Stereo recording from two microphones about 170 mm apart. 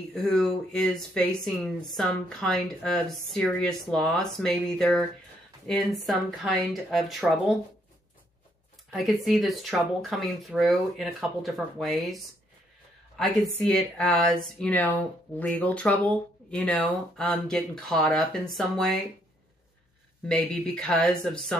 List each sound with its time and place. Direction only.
0.1 s speech: centre (ahead or behind)
8.9 s speech: centre (ahead or behind)
13.2 s speech: centre (ahead or behind)
20.2 s speech: 5° left (ahead or behind)